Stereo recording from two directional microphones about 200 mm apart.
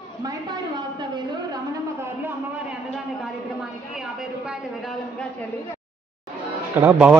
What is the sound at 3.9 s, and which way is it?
Speech, 5° right (ahead or behind).